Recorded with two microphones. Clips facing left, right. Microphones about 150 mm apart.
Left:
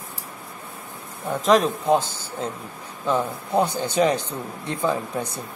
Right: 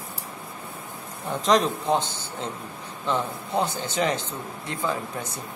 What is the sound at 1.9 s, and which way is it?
Speech, 10° left (ahead or behind).